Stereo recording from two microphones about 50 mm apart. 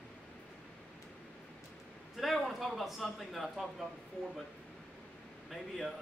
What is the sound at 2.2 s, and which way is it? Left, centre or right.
A man's voice, centre.